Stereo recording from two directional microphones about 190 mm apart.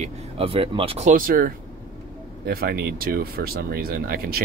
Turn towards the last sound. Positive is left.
turn(degrees=-50)  # may be behind; listen again after turning